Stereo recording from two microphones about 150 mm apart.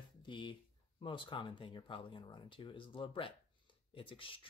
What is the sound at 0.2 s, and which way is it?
Speech, 30° left (ahead or behind).